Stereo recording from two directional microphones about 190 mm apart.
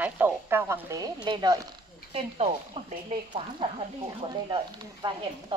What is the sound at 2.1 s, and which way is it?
Speech, 35° right (ahead or behind).